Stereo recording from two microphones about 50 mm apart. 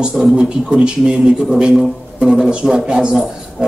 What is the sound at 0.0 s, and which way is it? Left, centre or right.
A man's voice, centre.